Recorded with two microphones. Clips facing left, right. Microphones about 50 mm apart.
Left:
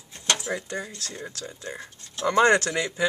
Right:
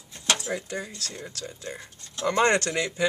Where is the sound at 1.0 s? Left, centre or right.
Centre.